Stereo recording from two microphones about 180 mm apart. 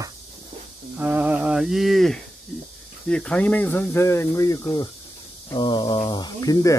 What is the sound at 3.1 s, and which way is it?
Speech, 5° left (ahead or behind).